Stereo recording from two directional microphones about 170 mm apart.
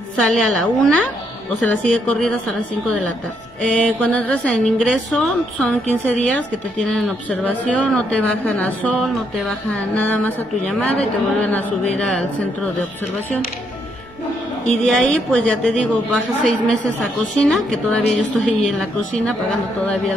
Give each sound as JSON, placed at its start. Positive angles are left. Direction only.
{"t": 0.2, "sound": "a woman's voice", "side_deg": 0}
{"t": 3.6, "sound": "a woman's voice", "side_deg": 5}
{"t": 14.9, "sound": "a woman's voice", "side_deg": 5}
{"t": 17.4, "sound": "a woman's voice", "side_deg": 5}